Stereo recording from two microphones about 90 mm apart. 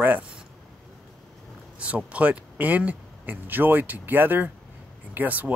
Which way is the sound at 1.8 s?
15° right (ahead or behind).